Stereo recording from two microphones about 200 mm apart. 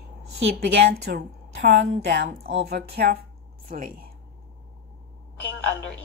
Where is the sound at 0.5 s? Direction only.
55° right (ahead or behind).